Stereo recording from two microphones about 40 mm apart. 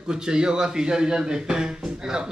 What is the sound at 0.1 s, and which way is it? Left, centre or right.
Speech, centre.